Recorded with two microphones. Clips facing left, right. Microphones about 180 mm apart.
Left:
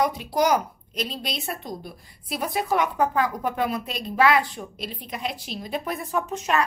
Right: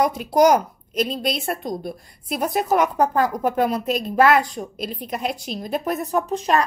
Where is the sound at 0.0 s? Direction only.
45° right (ahead or behind).